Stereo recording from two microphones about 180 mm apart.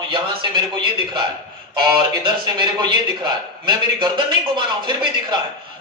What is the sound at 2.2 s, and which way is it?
Speech, 25° right (ahead or behind).